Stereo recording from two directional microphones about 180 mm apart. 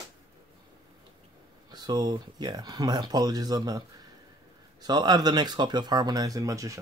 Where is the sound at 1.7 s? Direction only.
20° right (ahead or behind).